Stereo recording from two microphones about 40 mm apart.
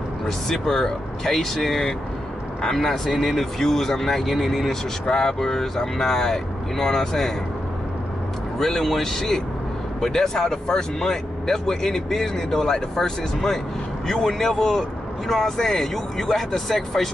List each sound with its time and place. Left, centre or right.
0.5 s speech: centre
8.5 s speech: centre